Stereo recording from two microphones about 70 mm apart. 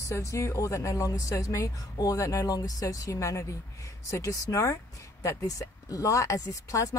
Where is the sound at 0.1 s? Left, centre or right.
Left.